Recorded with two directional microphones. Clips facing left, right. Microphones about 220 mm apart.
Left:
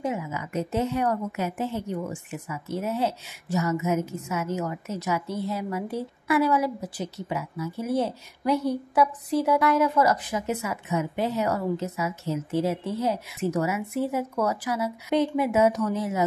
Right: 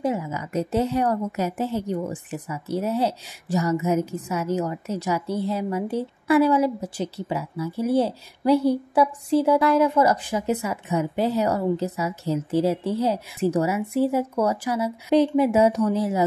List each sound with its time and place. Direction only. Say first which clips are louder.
0.0 s a woman's voice: right 4 dB; 35° right (ahead or behind)